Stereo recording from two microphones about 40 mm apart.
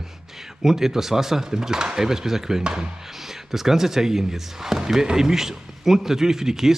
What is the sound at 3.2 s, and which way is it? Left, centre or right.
A man's voice, centre.